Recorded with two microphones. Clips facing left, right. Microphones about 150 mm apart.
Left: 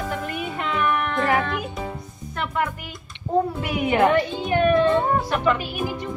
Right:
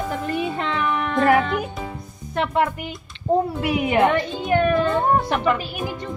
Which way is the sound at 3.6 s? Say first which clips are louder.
Right 2 dB; centre (ahead or behind).